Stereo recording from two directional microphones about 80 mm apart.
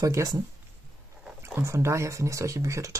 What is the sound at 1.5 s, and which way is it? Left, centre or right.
Speech, right.